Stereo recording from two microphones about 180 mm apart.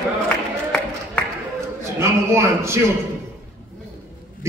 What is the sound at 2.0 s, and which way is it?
Speech, 15° right (ahead or behind).